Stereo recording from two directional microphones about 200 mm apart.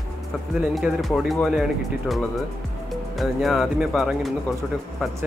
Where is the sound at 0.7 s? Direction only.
Centre (ahead or behind).